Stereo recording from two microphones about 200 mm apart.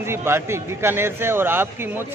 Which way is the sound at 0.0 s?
10° right (ahead or behind).